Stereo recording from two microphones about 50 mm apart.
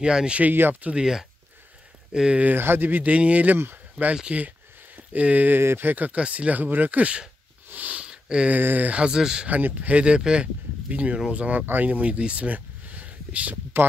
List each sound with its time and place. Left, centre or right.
0.0 s speech: centre
0.4 s speech: right
0.9 s speech: centre
2.4 s speech: right
3.7 s a sound: right
5.6 s speech: right
7.7 s sniff: right
8.0 s a sound: centre
8.5 s speech: right
9.0 s speech: centre
9.5 s speech: right